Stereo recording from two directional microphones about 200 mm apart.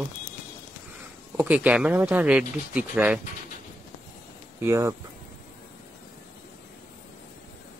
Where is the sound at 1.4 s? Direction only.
5° right (ahead or behind).